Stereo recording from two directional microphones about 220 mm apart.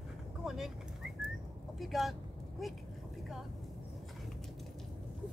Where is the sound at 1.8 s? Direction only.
Centre (ahead or behind).